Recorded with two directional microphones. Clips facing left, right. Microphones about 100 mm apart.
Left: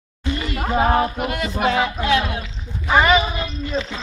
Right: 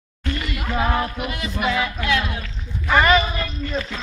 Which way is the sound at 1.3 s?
55° left (ahead or behind).